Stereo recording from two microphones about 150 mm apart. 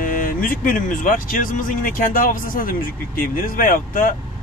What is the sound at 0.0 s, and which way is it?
Speech, 65° left (ahead or behind).